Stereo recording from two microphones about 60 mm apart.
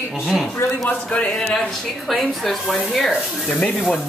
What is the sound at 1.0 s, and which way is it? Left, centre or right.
Speech, centre.